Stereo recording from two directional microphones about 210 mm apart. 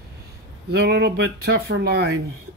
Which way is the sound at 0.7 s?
50° right (ahead or behind).